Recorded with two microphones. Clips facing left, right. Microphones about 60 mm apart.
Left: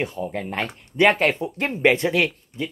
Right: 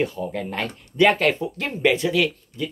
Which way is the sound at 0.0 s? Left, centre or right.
Left.